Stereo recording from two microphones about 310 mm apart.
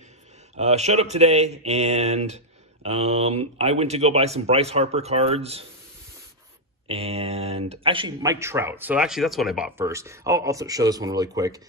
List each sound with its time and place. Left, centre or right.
0.6 s speech: right
6.9 s speech: centre